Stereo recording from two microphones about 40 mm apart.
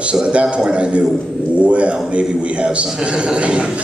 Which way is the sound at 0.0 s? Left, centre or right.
Right.